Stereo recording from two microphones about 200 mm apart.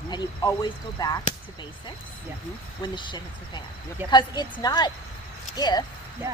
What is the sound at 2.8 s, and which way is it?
Speech, 25° left (ahead or behind).